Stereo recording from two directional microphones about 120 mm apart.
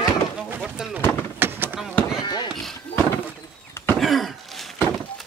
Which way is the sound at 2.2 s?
40° left (ahead or behind).